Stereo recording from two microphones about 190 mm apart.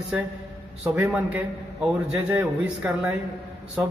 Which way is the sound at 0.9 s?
5° right (ahead or behind).